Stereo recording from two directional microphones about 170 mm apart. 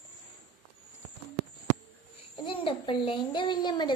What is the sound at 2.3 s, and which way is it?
A child's voice, 30° left (ahead or behind).